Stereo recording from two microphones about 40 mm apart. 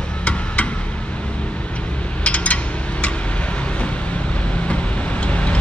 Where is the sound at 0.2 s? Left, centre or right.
Left.